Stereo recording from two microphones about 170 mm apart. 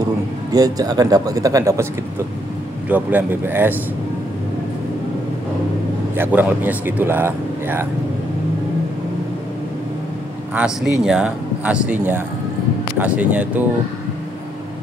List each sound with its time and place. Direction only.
0.5 s speech: 20° right (ahead or behind)
2.9 s speech: 10° right (ahead or behind)
6.1 s speech: 10° right (ahead or behind)
10.5 s speech: 5° right (ahead or behind)